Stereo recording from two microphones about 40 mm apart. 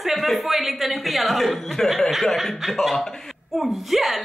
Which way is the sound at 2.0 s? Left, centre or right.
Centre.